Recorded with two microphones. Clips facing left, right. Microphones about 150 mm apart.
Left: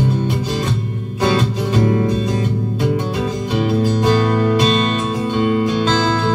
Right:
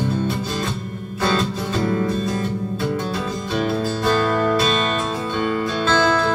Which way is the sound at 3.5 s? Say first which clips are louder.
Left 4 dB; 15° left (ahead or behind).